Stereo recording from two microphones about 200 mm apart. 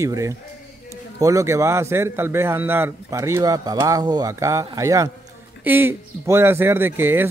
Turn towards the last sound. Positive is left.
turn(degrees=-10)  # may be behind; listen again after turning